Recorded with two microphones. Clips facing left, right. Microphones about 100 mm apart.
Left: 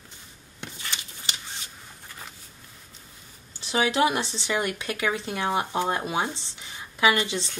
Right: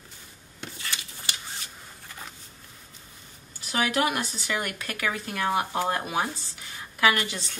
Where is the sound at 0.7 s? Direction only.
20° left (ahead or behind).